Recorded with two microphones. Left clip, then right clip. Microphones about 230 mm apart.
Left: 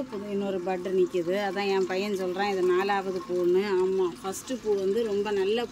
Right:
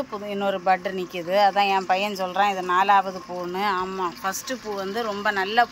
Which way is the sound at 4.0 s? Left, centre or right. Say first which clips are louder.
Right 3 dB; right.